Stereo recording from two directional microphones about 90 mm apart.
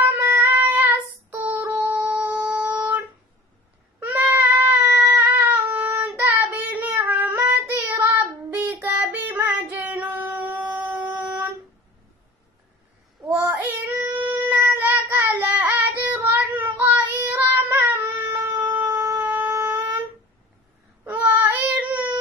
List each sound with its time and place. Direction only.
0.0 s singing: 20° right (ahead or behind)
1.3 s a sound: 20° right (ahead or behind)
2.3 s music: 15° right (ahead or behind)
4.0 s cat: 20° right (ahead or behind)
5.7 s child singing: 20° right (ahead or behind)
9.8 s female singing: 20° right (ahead or behind)
13.3 s child singing: 20° right (ahead or behind)
18.9 s wind instrument: 30° right (ahead or behind)
21.0 s child singing: 20° right (ahead or behind)